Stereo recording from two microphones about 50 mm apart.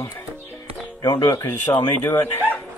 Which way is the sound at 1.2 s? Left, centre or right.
Left.